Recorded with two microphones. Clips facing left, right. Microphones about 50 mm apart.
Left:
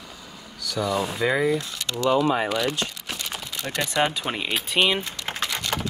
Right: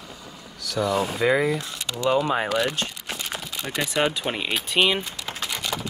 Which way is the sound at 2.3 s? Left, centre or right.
Right.